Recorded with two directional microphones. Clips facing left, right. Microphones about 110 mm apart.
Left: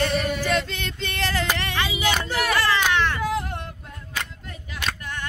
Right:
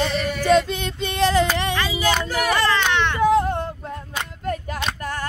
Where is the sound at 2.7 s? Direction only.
5° left (ahead or behind).